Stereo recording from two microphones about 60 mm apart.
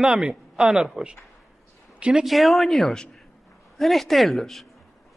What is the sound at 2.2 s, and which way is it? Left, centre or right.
Speech, centre.